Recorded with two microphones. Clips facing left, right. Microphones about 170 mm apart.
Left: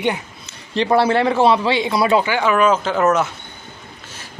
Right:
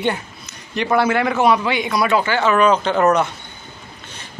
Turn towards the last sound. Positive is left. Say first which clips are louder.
# right 1 dB
turn(degrees=5)  # may be behind; listen again after turning